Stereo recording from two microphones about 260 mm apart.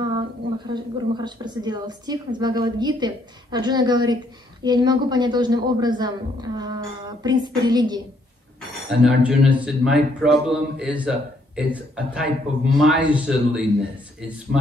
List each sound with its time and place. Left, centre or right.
0.7 s a woman's voice: centre
9.0 s a man's voice: centre